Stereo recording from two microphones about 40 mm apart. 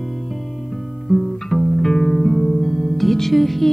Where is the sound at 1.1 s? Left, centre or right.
Centre.